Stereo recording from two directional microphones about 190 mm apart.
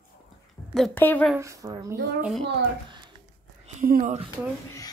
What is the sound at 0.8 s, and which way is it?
Speech, 5° left (ahead or behind).